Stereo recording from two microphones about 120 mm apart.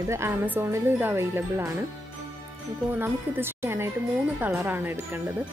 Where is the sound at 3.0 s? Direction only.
20° right (ahead or behind).